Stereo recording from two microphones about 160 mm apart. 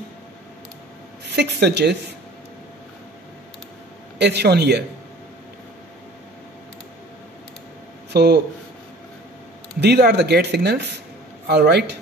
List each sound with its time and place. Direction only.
1.2 s speech: 90° right
4.2 s speech: 90° right
8.1 s speech: 90° right
9.8 s speech: 90° right